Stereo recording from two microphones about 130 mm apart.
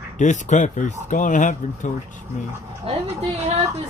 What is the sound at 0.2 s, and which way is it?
Speech, 70° left (ahead or behind).